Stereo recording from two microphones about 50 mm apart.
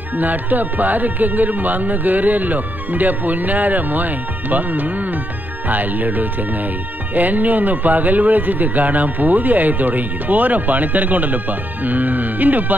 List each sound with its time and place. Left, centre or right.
0.1 s speech: right